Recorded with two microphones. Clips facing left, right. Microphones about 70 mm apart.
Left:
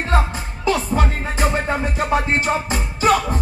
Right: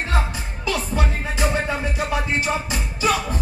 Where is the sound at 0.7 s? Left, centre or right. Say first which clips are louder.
Left 5 dB; left.